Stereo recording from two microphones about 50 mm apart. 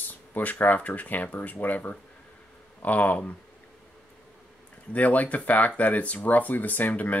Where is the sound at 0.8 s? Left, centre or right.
Left.